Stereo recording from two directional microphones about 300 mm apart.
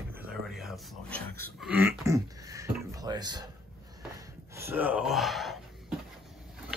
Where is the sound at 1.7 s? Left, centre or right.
Centre.